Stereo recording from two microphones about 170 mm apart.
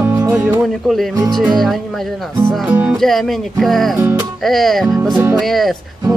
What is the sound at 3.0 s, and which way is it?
Speech, centre (ahead or behind).